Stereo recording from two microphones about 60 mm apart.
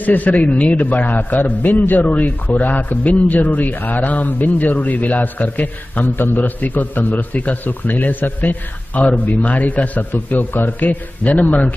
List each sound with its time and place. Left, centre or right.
0.0 s a man's voice: left